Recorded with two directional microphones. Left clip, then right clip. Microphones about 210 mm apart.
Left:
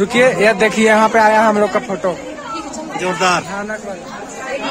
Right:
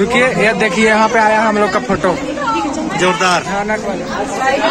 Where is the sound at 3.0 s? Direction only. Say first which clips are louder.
Right 2 dB; 5° left (ahead or behind).